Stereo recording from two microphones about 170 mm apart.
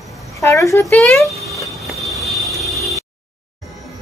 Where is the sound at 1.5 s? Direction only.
Centre (ahead or behind).